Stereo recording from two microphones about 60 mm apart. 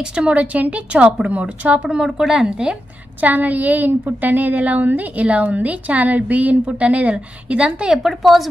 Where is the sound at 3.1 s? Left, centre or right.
Right.